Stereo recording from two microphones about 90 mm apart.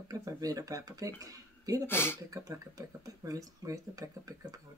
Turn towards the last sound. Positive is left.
turn(degrees=-40)  # may be behind; listen again after turning